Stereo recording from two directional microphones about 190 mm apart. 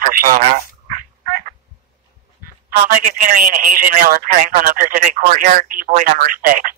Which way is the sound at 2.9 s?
45° right (ahead or behind).